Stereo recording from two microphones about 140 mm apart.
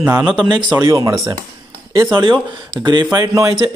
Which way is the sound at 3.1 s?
25° right (ahead or behind).